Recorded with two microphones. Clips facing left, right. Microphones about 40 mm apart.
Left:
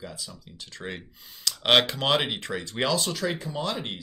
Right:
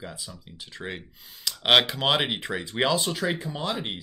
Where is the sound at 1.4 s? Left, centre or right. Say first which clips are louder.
Right 1 dB; centre.